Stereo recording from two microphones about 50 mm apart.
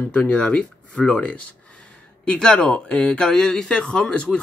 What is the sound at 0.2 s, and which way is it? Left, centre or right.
Speech, centre.